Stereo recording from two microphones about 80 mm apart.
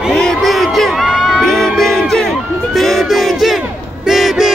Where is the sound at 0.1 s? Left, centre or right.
Centre.